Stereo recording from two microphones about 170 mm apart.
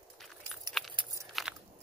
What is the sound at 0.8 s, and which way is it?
Keys jangling, centre (ahead or behind).